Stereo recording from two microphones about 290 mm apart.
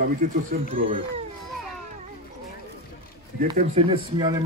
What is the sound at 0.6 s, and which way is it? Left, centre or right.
Speech, right.